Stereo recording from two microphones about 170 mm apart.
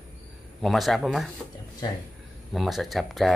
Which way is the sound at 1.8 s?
25° left (ahead or behind).